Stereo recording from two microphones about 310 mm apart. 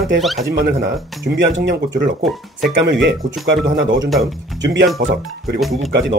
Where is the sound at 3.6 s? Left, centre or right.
Right.